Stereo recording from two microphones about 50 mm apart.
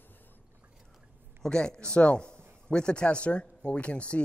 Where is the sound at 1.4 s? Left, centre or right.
Centre.